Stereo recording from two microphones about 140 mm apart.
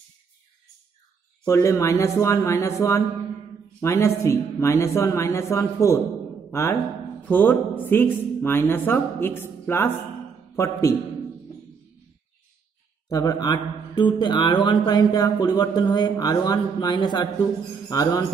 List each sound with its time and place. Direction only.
1.4 s a man's voice: 20° left (ahead or behind)
13.1 s speech: 25° left (ahead or behind)